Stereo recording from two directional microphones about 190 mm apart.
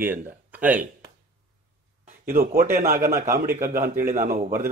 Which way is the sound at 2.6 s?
10° right (ahead or behind).